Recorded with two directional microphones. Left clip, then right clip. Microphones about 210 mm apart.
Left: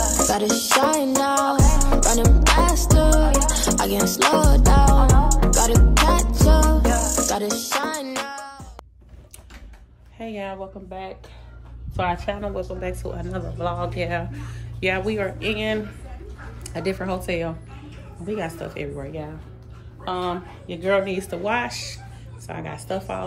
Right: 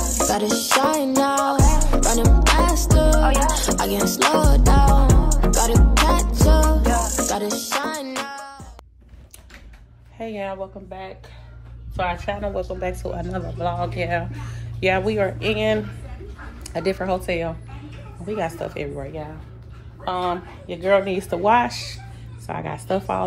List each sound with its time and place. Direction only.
0.3 s music: centre (ahead or behind)
10.1 s speech: 10° left (ahead or behind)
12.3 s a woman's voice: 15° left (ahead or behind); by 22.9 s 15° right (ahead or behind)